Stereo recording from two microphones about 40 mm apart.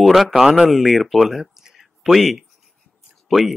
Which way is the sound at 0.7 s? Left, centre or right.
Centre.